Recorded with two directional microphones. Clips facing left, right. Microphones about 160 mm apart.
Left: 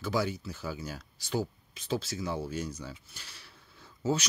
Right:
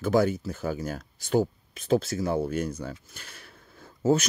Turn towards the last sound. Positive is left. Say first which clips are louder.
# right 7 dB
turn(degrees=-50)  # may be behind; listen again after turning